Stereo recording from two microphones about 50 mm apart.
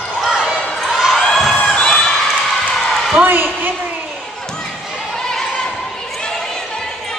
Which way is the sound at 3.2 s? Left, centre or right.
Right.